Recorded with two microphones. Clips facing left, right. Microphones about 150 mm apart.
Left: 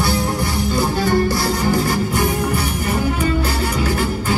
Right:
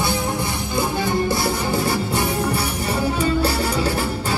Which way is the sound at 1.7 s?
25° right (ahead or behind).